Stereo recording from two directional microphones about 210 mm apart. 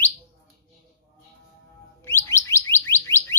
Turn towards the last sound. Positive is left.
turn(degrees=10)  # may be behind; listen again after turning